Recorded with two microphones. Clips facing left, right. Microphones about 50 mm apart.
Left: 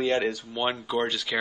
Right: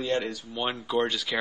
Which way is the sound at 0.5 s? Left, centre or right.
Centre.